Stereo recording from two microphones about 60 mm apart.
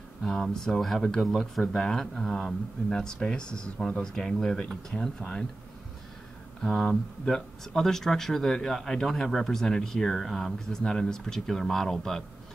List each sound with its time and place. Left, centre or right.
0.3 s speech: centre
4.0 s speech: centre
6.6 s speech: centre